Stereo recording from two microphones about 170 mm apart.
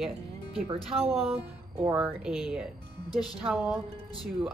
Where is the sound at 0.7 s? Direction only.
35° right (ahead or behind).